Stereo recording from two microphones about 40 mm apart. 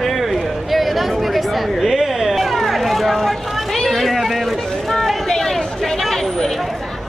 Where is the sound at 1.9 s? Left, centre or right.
Centre.